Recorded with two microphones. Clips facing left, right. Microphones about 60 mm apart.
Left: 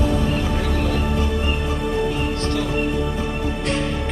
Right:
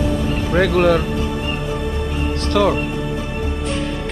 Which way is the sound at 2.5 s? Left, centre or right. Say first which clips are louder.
Right 7 dB; right.